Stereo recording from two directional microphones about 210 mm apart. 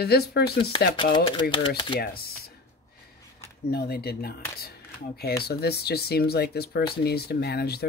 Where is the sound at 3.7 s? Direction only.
50° left (ahead or behind).